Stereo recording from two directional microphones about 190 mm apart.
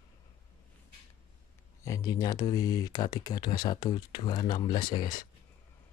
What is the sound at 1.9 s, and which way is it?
Speech, 15° left (ahead or behind).